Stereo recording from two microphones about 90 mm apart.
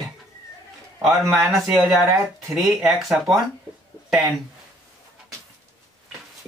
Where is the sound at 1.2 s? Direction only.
35° right (ahead or behind).